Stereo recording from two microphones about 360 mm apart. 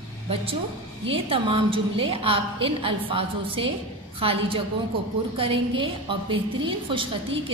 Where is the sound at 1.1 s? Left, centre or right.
Centre.